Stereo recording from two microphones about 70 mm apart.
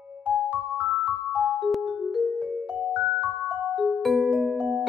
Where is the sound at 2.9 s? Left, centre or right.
Right.